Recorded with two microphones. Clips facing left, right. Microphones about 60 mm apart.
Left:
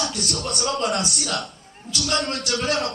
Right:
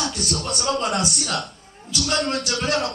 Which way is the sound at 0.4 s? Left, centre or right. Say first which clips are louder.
Even; centre.